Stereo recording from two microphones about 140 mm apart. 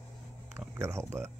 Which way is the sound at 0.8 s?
20° right (ahead or behind).